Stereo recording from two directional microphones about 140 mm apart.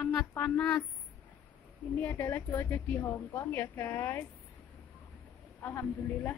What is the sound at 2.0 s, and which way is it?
A woman's voice, 15° left (ahead or behind).